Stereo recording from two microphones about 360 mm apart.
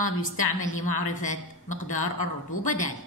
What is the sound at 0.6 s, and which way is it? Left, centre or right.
A woman's voice, left.